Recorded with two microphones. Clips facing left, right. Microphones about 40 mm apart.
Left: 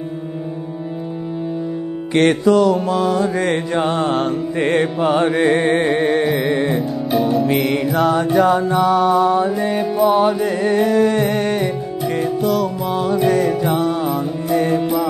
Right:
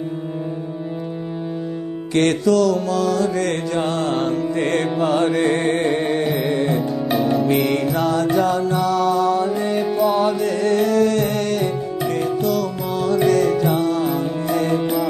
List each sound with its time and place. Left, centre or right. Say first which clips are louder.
2.1 s music: left 3 dB; left
4.1 s music: left 2 dB; centre
4.6 s music: left 4 dB; centre
5.9 s music: left 3 dB; centre
6.5 s music: left 2 dB; left
7.1 s music: left 2 dB; centre
8.1 s music: left 4 dB; centre
12.9 s music: even; left
14.8 s music: left 2 dB; centre